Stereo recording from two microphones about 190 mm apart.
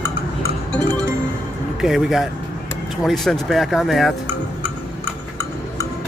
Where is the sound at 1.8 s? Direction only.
5° right (ahead or behind).